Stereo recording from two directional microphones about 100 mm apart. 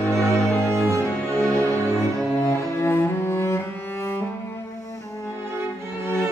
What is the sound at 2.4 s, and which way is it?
Cello, 25° left (ahead or behind).